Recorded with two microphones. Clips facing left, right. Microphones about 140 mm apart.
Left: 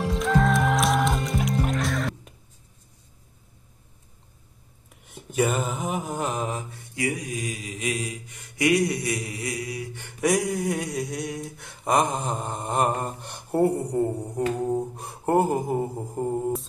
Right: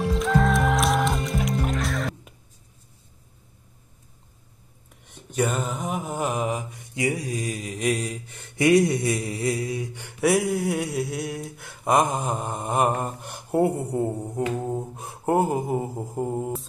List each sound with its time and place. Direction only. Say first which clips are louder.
0.1 s music: even; centre (ahead or behind)
5.0 s mantra: left 1 dB; 5° left (ahead or behind)
6.2 s mantra: right 2 dB; 10° right (ahead or behind); by 9.8 s 30° right (ahead or behind)
9.9 s a sound: right 1 dB; 10° right (ahead or behind)
10.7 s mantra: right 2 dB; 5° right (ahead or behind)